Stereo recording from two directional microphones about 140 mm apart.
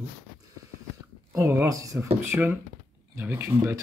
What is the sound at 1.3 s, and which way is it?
Speech, 20° right (ahead or behind).